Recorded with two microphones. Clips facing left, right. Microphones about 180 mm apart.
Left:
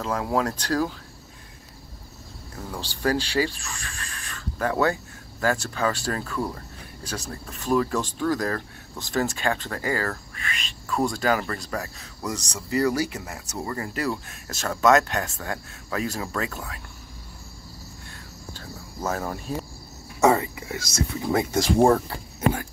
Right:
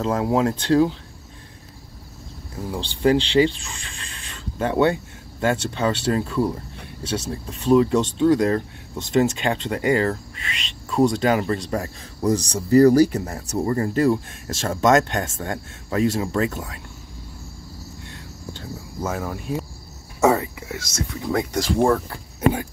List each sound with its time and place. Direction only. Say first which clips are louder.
0.0 s speech: right 5 dB; 25° right (ahead or behind)
2.7 s speech: right 6 dB; 20° right (ahead or behind)
20.2 s speech: right 1 dB; centre (ahead or behind)
21.7 s speech: left 1 dB; 20° left (ahead or behind)